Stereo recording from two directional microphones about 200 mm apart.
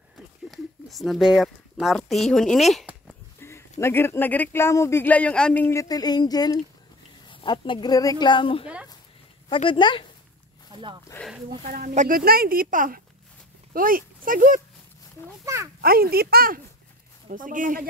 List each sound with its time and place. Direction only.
0.5 s speech: centre (ahead or behind)
3.3 s a sound: 10° left (ahead or behind)
3.8 s speech: 10° left (ahead or behind)
11.1 s speech: 15° left (ahead or behind)
11.4 s speech: 40° right (ahead or behind)
15.4 s speech: 15° right (ahead or behind)
15.8 s speech: 50° right (ahead or behind)